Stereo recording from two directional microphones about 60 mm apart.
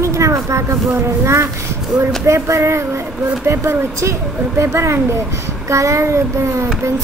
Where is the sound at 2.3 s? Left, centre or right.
Right.